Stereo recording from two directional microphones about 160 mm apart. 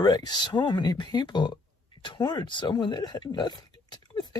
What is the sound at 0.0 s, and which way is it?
Speech, 25° left (ahead or behind).